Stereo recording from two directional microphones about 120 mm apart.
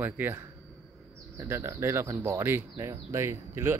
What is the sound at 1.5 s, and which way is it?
Speech, 20° right (ahead or behind).